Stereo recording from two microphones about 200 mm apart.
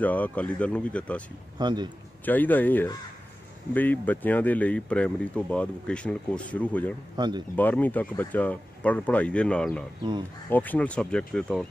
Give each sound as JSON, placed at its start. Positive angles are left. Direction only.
{"t": 0.0, "sound": "speech", "side_deg": 5}
{"t": 1.6, "sound": "speech", "side_deg": -20}
{"t": 2.2, "sound": "speech", "side_deg": 10}
{"t": 7.2, "sound": "speech", "side_deg": -20}
{"t": 7.5, "sound": "speech", "side_deg": 10}